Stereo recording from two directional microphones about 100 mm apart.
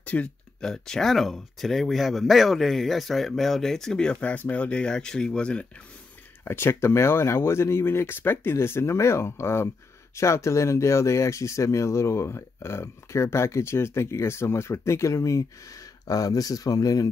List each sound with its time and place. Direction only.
0.0 s speech: 15° left (ahead or behind)
6.4 s speech: 25° left (ahead or behind)